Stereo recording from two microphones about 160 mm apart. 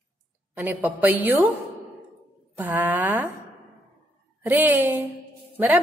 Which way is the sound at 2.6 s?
10° right (ahead or behind).